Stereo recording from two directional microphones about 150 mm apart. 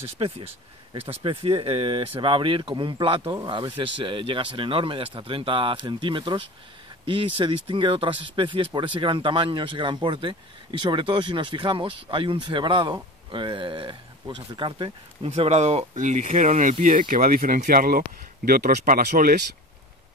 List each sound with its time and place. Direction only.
0.2 s speech: 40° right (ahead or behind)
15.2 s speech: 45° right (ahead or behind)
15.9 s speech: 55° right (ahead or behind)